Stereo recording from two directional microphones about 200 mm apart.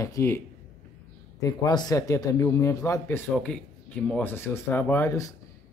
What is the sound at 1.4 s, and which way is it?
Speech, 20° left (ahead or behind).